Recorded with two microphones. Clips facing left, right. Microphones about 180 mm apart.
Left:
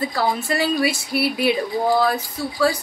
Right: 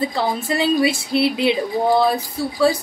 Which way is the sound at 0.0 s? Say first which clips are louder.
Right 1 dB; 25° right (ahead or behind).